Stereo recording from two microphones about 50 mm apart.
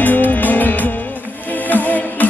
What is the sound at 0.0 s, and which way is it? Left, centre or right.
Music, left.